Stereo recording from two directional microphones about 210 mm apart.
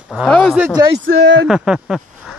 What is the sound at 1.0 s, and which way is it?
Speech, 60° right (ahead or behind).